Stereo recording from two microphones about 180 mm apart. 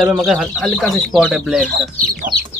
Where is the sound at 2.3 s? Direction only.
30° left (ahead or behind).